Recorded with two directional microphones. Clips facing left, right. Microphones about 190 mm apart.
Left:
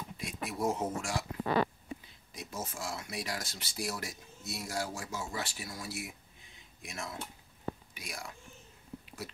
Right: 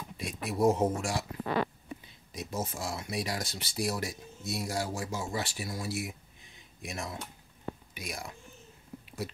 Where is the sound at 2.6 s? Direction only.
20° right (ahead or behind).